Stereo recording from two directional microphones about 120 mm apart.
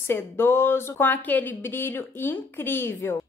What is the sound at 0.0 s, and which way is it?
Speech, 20° left (ahead or behind).